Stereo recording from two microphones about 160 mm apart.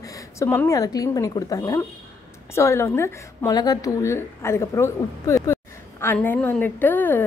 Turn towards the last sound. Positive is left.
turn(degrees=10)  # may be behind; listen again after turning